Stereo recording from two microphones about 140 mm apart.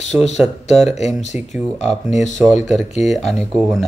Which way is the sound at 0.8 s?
50° left (ahead or behind).